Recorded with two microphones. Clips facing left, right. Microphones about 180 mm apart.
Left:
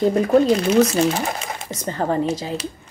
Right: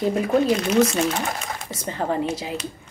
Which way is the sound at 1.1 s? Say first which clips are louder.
Left 2 dB; 25° left (ahead or behind).